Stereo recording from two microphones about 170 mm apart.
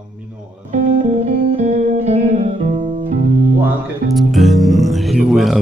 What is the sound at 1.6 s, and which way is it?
Music, 40° right (ahead or behind).